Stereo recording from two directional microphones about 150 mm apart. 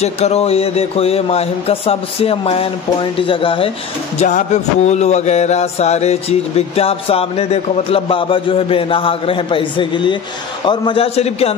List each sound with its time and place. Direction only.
0.0 s a man's voice: 45° left (ahead or behind)
4.2 s music: 55° left (ahead or behind); by 10.1 s 35° left (ahead or behind)
10.6 s a man's voice: 35° left (ahead or behind)